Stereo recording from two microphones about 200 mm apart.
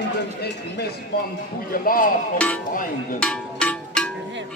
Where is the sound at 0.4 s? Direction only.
55° left (ahead or behind).